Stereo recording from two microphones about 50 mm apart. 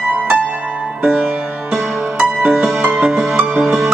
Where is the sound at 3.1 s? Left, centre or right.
Centre.